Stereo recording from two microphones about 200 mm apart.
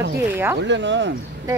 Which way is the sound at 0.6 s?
60° right (ahead or behind).